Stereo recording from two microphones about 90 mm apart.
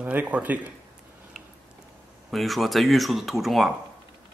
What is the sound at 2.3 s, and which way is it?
Speech, centre (ahead or behind).